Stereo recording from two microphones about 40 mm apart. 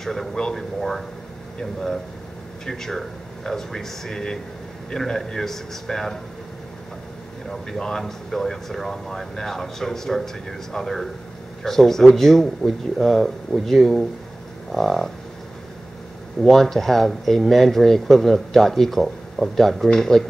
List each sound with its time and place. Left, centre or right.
0.0 s speech: centre
7.8 s speech: centre
16.4 s speech: centre